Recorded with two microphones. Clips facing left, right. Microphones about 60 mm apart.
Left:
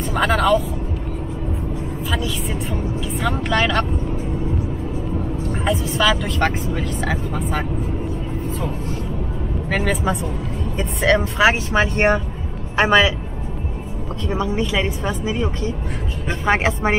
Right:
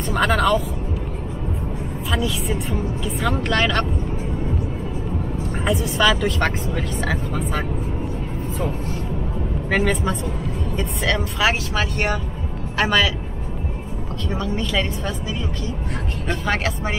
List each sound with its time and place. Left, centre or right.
0.1 s speech: centre
2.0 s speech: centre
5.5 s speech: centre
9.7 s speech: centre
10.8 s speech: left
14.3 s speech: centre